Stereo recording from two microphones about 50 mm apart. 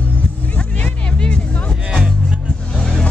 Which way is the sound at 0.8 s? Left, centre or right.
Left.